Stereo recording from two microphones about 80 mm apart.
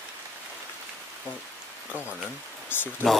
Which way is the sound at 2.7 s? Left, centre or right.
Left.